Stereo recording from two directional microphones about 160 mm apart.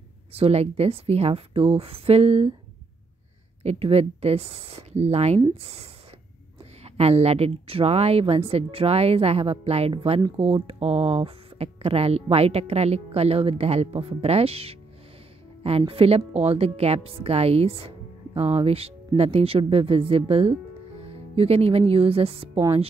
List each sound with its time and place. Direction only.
0.3 s a woman's voice: 40° right (ahead or behind)
3.6 s a woman's voice: 40° right (ahead or behind)
15.8 s a woman's voice: 35° right (ahead or behind)